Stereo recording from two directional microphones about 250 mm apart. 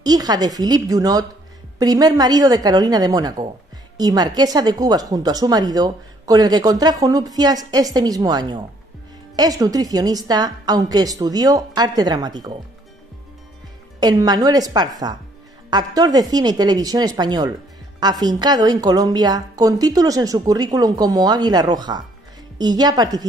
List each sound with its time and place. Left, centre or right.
0.0 s speech: centre
13.9 s speech: centre